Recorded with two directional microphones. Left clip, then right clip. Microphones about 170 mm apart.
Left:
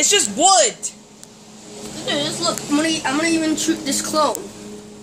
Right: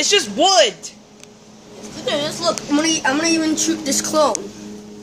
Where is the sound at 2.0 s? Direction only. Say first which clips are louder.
Right 2 dB; 60° right (ahead or behind).